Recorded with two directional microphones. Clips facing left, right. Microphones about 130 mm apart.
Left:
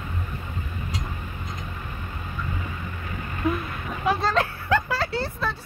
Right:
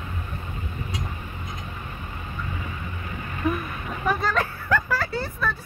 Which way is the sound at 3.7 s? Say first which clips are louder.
Even; centre (ahead or behind).